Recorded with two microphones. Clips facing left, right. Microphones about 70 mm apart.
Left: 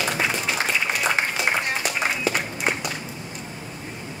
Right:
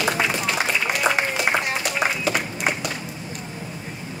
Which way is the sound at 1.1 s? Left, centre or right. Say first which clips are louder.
Right 3 dB; right.